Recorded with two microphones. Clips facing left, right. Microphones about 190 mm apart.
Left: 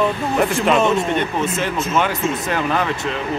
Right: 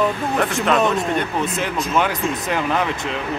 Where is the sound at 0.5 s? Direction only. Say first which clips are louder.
Left 1 dB; centre (ahead or behind).